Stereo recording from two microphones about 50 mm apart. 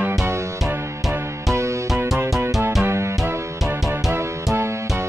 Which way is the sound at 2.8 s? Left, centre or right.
Right.